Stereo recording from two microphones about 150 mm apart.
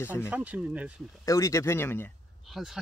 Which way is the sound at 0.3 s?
10° right (ahead or behind).